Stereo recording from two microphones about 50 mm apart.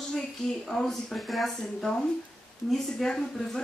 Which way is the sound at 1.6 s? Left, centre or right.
Centre.